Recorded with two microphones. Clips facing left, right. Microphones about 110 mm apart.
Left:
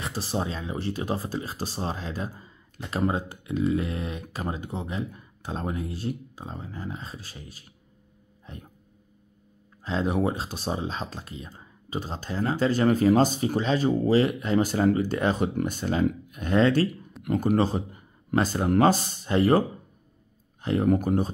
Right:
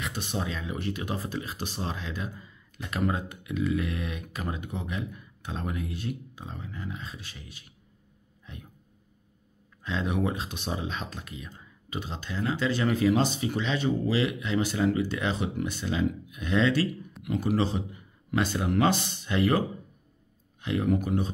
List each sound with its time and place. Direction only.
0.0 s speech: 35° left (ahead or behind)
9.8 s speech: 35° left (ahead or behind)
20.6 s speech: 40° left (ahead or behind)